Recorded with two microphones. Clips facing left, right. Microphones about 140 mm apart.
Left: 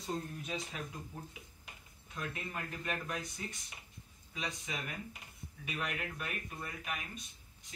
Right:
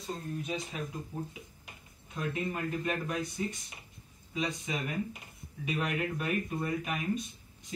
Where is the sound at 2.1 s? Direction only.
15° right (ahead or behind).